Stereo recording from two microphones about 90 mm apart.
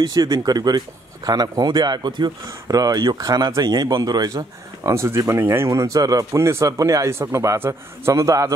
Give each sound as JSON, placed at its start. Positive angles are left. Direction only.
{"t": 0.0, "sound": "speech", "side_deg": -45}
{"t": 2.4, "sound": "a man's voice", "side_deg": -45}